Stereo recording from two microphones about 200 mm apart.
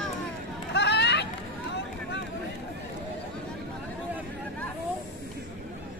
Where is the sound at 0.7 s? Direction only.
60° left (ahead or behind).